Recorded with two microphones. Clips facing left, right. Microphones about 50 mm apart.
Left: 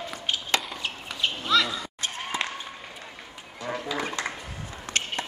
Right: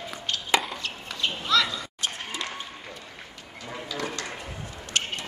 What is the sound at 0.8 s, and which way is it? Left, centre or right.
Children playing, centre.